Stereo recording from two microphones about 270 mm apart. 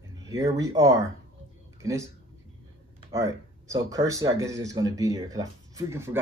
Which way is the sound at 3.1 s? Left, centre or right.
Centre.